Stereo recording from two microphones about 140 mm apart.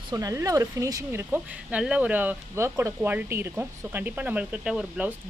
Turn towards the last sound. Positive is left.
turn(degrees=-5)  # may be behind; listen again after turning